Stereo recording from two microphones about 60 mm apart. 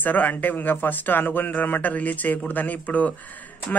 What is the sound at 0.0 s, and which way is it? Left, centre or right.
Speech, left.